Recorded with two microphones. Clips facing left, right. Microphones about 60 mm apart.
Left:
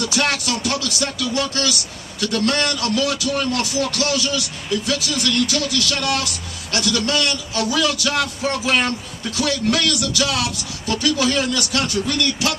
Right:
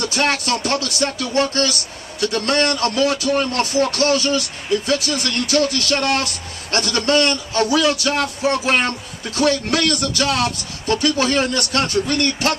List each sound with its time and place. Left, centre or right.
0.0 s speech: right